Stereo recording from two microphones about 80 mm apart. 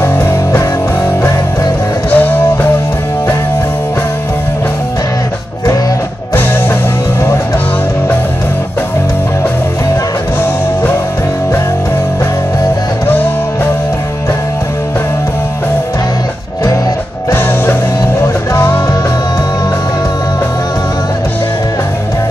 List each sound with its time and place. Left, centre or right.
0.0 s music: left
2.0 s music: left
18.2 s music: left